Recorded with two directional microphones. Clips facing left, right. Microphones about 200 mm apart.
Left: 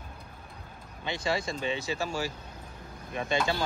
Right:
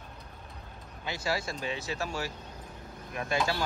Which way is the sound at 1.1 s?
5° right (ahead or behind).